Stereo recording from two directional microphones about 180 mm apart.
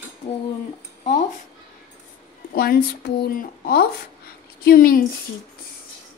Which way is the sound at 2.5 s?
60° left (ahead or behind).